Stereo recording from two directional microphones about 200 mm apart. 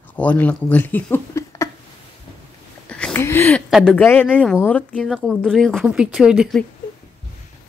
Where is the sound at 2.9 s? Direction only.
5° left (ahead or behind).